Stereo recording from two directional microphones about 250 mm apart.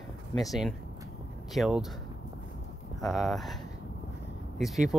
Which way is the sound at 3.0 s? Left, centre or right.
Centre.